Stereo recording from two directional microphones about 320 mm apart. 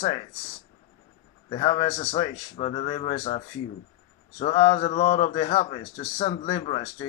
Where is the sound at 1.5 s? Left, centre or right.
Centre.